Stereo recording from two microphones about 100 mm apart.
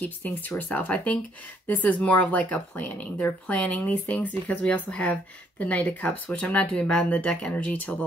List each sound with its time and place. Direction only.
0.0 s speech: 20° left (ahead or behind)